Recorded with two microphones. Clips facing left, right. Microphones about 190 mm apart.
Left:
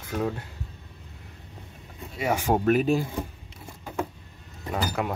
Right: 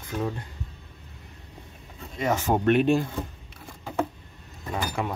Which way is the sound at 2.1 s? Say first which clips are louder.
Even; 10° left (ahead or behind).